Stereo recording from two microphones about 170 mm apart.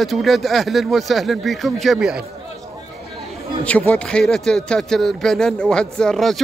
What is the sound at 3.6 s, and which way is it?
A man's voice, 10° left (ahead or behind).